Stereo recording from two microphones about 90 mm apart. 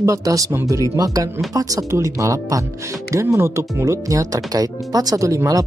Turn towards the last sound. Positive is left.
turn(degrees=-35)  # may be behind; listen again after turning